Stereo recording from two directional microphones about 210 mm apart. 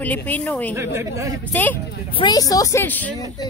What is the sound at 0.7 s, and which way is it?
Speech, 10° right (ahead or behind).